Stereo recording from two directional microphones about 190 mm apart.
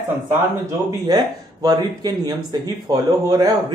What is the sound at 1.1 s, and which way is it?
Speech, 20° right (ahead or behind).